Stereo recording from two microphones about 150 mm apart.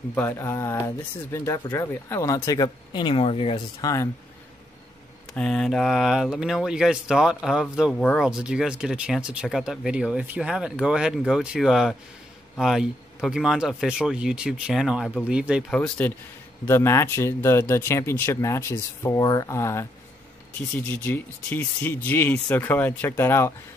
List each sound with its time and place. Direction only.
0.1 s speech: 15° left (ahead or behind); by 3.6 s 40° left (ahead or behind)
3.8 s speech: 20° left (ahead or behind)
5.3 s speech: 5° left (ahead or behind)
8.0 s speech: 5° left (ahead or behind)
8.3 s speech: 5° right (ahead or behind)
15.7 s speech: 5° left (ahead or behind)